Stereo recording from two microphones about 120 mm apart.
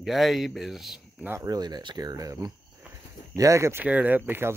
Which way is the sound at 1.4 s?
35° right (ahead or behind).